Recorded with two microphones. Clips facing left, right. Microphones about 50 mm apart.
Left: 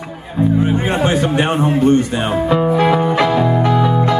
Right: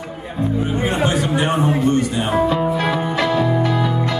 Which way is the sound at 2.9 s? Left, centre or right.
Left.